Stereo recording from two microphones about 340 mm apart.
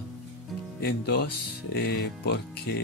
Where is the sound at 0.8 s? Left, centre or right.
Left.